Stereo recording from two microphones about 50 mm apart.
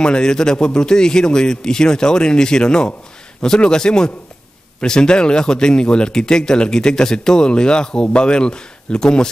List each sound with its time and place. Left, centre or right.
0.0 s a man's voice: centre